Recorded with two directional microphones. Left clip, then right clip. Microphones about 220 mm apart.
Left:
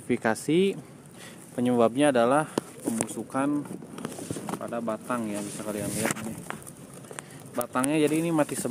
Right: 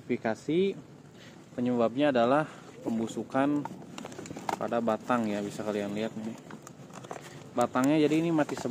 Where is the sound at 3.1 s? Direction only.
5° right (ahead or behind).